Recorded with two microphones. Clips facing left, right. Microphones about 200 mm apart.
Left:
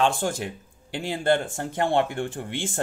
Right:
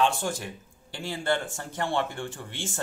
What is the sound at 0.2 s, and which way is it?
Speech, 55° left (ahead or behind).